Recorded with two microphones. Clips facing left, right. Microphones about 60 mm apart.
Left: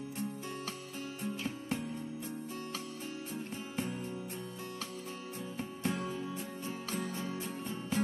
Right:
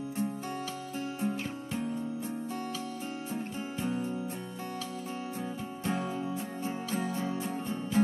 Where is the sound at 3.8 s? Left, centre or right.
Right.